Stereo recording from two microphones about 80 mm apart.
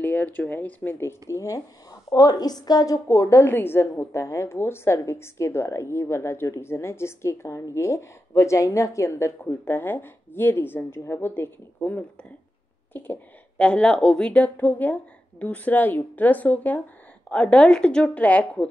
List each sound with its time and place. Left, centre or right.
0.0 s speech: left
1.3 s a woman's voice: left
13.6 s a woman's voice: centre